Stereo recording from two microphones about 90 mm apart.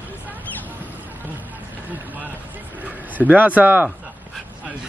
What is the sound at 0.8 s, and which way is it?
Vehicle, 20° right (ahead or behind).